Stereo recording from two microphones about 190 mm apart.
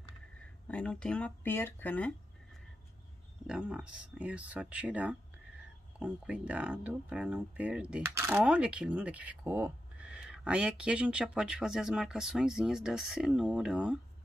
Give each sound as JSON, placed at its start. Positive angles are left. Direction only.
{"t": 0.7, "sound": "speech", "side_deg": 5}
{"t": 3.4, "sound": "speech", "side_deg": -5}